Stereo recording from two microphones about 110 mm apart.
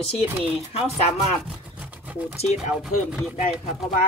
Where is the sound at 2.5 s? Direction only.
5° right (ahead or behind).